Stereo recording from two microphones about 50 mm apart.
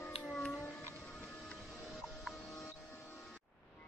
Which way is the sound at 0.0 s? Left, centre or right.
Left.